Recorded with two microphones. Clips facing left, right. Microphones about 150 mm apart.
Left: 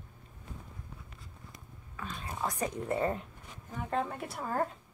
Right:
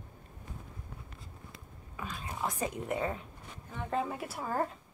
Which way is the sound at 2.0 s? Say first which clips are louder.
Right 1 dB; 15° right (ahead or behind).